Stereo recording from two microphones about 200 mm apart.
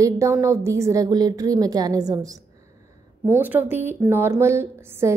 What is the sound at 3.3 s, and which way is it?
A woman's voice, 10° right (ahead or behind).